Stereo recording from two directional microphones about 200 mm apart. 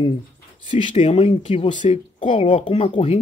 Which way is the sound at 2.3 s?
25° left (ahead or behind).